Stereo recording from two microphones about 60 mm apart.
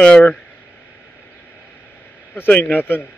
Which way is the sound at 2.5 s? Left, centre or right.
Left.